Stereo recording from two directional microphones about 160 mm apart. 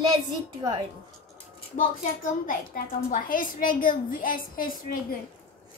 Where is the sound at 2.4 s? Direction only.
60° left (ahead or behind).